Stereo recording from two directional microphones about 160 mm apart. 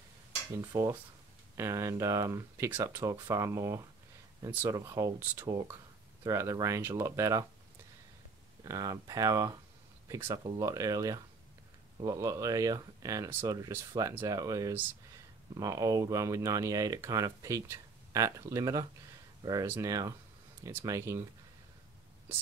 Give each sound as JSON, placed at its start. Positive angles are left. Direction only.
{"t": 0.6, "sound": "speech", "side_deg": -20}
{"t": 4.7, "sound": "speech", "side_deg": -20}
{"t": 8.6, "sound": "speech", "side_deg": -20}